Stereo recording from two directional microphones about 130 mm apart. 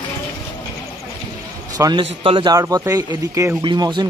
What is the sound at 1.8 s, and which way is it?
Speech, 30° right (ahead or behind).